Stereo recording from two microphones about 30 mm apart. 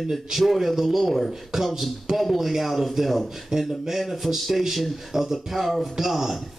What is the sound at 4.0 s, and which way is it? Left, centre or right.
Speech, centre.